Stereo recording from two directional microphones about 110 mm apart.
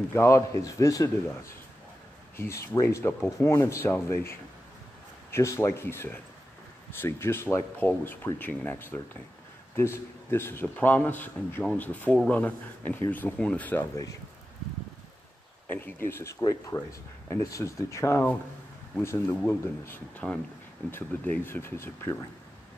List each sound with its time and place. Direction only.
0.1 s speech: 25° left (ahead or behind)
15.7 s speech: 20° left (ahead or behind)